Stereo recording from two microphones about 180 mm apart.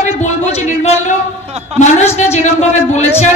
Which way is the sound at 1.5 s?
35° right (ahead or behind).